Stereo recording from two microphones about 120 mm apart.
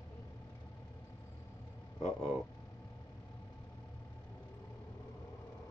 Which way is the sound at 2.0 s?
5° left (ahead or behind).